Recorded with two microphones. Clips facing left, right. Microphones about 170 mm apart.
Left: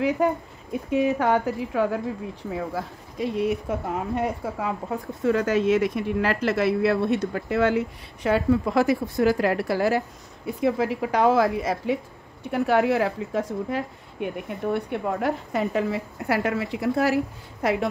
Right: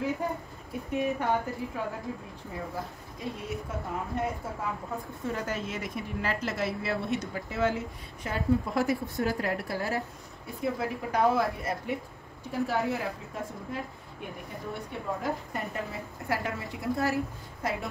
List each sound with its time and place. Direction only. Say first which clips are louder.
0.2 s speech: left 10 dB; 80° left
12.4 s speech: left 8 dB; 70° left (ahead or behind)